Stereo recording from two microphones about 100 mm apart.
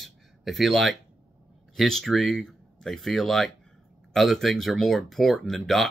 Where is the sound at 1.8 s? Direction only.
Centre (ahead or behind).